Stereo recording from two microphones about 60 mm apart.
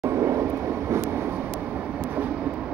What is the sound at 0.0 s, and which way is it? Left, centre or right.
Vehicle, right.